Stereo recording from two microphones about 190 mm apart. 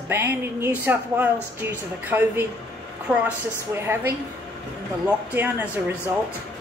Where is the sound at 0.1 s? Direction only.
10° right (ahead or behind).